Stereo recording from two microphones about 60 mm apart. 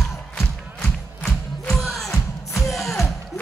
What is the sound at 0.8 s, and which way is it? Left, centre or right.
Music, centre.